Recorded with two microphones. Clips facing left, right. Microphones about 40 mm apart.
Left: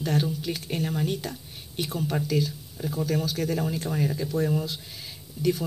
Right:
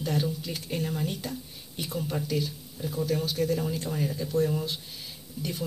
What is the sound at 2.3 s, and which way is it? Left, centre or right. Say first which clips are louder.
Speech: left 5 dB; left.